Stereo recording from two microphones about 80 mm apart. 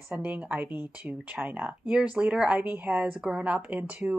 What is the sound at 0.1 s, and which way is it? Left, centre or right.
Speech, centre.